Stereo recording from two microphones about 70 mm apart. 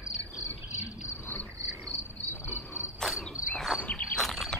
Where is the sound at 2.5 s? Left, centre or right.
Left.